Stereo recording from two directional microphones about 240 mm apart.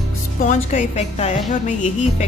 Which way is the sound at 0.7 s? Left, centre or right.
Left.